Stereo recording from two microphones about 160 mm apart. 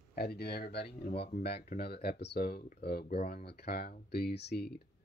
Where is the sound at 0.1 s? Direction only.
80° left.